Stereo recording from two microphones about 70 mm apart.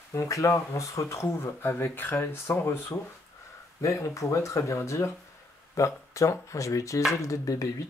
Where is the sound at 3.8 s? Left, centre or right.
Left.